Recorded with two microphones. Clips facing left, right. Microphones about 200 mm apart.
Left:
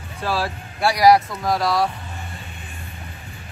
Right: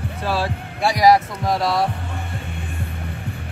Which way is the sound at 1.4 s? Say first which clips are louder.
Even; 25° right (ahead or behind).